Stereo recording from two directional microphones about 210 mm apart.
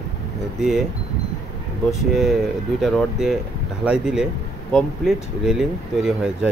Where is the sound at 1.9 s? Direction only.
Centre (ahead or behind).